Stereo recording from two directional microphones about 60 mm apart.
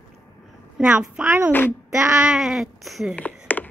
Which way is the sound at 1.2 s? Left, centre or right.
Right.